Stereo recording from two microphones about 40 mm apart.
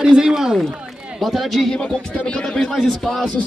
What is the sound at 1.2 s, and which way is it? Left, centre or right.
Speech, centre.